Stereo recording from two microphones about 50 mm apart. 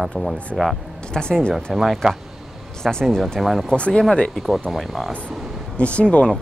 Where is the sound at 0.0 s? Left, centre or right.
Centre.